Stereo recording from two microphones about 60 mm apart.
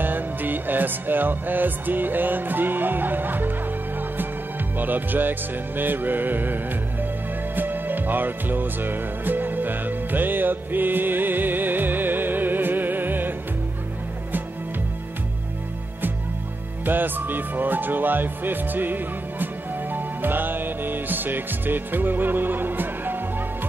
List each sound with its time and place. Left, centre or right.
0.0 s music: right
4.7 s music: right
16.8 s speech: right